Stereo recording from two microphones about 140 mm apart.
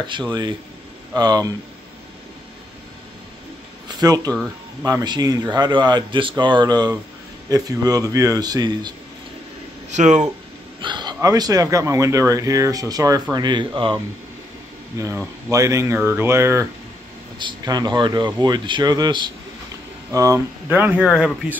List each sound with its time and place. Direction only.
0.0 s a man's voice: 30° right (ahead or behind)
4.0 s a man's voice: 25° right (ahead or behind)
9.8 s speech: 55° right (ahead or behind)
10.8 s a sound: 35° right (ahead or behind)
11.1 s speech: 25° right (ahead or behind)
15.5 s speech: 20° right (ahead or behind)
17.4 s a man's voice: 30° right (ahead or behind); by 21.5 s 5° right (ahead or behind)